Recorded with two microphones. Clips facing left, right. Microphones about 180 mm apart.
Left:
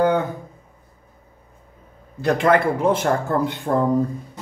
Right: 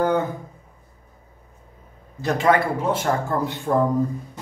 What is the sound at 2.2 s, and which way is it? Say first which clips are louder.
A man's voice: left 2 dB; 55° left (ahead or behind).